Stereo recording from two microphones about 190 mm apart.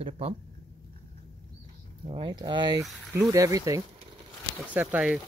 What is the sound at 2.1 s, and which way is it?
Speech, 25° right (ahead or behind).